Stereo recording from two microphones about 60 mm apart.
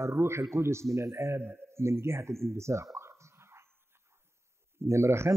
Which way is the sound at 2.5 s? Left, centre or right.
Right.